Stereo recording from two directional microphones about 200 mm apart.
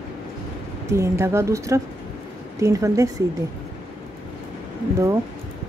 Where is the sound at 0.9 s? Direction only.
15° right (ahead or behind).